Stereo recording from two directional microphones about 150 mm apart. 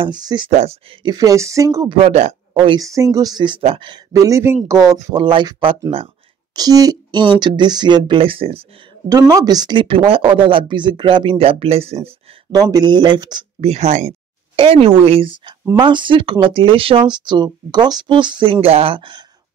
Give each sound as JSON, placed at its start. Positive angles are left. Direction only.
{"t": 0.0, "sound": "speech", "side_deg": -30}
{"t": 1.9, "sound": "speech", "side_deg": -45}
{"t": 2.8, "sound": "speech", "side_deg": -20}
{"t": 4.1, "sound": "speech", "side_deg": -20}
{"t": 9.3, "sound": "speech", "side_deg": -25}
{"t": 12.5, "sound": "speech", "side_deg": -25}
{"t": 13.6, "sound": "speech", "side_deg": -45}
{"t": 14.5, "sound": "speech", "side_deg": -40}